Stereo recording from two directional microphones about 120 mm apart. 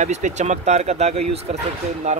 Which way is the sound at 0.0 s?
75° right (ahead or behind).